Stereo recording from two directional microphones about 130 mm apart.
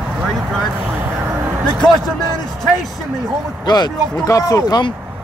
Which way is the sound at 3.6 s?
30° left (ahead or behind).